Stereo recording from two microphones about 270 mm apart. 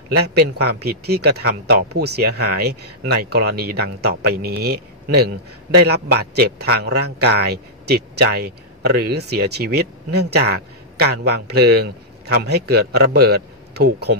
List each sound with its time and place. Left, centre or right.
0.3 s speech: right